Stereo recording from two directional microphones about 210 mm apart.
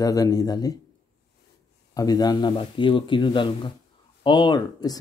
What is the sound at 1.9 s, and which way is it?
Speech, 15° left (ahead or behind).